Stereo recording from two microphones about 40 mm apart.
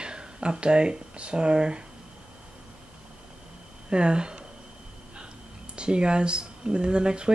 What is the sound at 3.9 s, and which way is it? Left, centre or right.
Speech, right.